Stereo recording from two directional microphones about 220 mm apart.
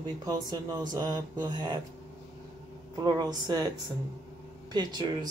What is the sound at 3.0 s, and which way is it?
Speech, 20° right (ahead or behind).